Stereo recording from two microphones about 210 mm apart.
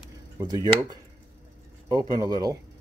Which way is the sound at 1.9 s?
20° right (ahead or behind).